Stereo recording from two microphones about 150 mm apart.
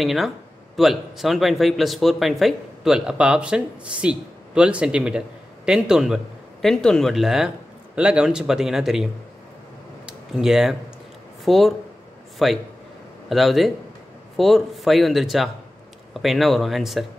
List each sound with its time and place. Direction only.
0.0 s a man's voice: centre (ahead or behind)
10.0 s a sound: 5° right (ahead or behind)
11.4 s a man's voice: centre (ahead or behind)